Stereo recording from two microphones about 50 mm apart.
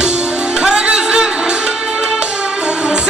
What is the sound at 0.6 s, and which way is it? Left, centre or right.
Music, centre.